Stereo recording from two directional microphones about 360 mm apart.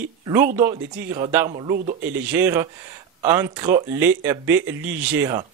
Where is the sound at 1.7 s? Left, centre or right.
Right.